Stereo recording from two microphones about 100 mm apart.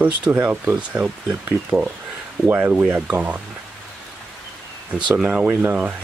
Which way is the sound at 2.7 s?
10° right (ahead or behind).